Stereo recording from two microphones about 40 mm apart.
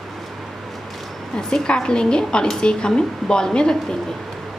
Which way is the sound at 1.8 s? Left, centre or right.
Left.